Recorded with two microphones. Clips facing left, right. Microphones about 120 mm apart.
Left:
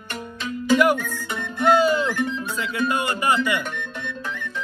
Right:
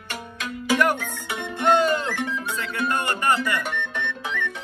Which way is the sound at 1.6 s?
5° left (ahead or behind).